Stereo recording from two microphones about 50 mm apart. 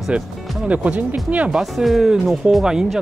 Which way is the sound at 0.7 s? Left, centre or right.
Right.